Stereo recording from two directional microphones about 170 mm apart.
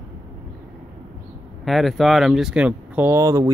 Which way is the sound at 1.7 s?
Centre (ahead or behind).